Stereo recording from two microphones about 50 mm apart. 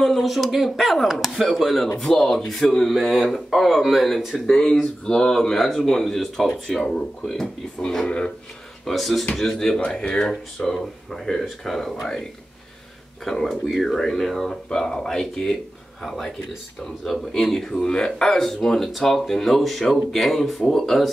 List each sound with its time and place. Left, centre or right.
0.0 s speech: centre
4.5 s speech: centre
6.8 s speech: centre
9.5 s speech: centre
13.2 s speech: centre